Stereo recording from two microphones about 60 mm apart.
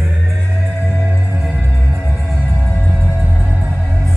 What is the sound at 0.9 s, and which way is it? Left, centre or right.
Music, centre.